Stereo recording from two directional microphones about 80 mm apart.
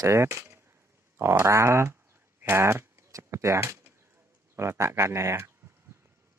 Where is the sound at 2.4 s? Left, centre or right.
Right.